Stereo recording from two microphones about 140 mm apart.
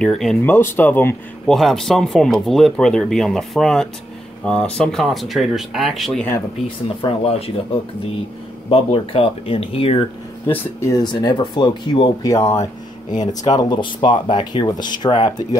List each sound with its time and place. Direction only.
0.0 s speech: 5° left (ahead or behind)
0.4 s speech: 15° left (ahead or behind)
1.5 s speech: centre (ahead or behind)
7.0 s speech: 45° left (ahead or behind)
8.6 s speech: 40° left (ahead or behind)
10.4 s speech: 20° left (ahead or behind)
11.1 s speech: 35° left (ahead or behind)